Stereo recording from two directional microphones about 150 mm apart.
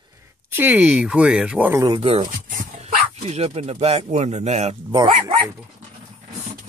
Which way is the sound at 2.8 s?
45° right (ahead or behind).